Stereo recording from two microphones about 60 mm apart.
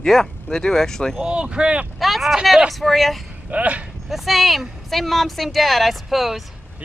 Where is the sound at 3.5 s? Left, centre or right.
Right.